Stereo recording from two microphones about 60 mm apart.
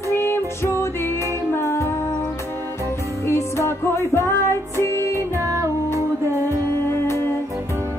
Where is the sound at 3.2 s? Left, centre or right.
Left.